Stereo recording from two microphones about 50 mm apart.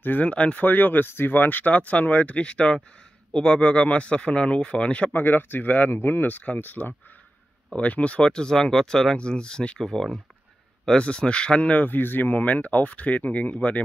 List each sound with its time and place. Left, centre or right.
0.0 s speech: left
0.7 s speech: left
5.1 s speech: left
7.7 s speech: left
8.3 s speech: centre